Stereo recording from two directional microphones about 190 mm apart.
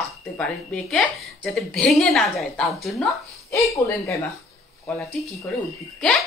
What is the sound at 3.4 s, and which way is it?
Speech, 15° left (ahead or behind).